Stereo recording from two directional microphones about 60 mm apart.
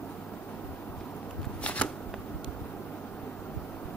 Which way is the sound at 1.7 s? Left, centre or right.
Left.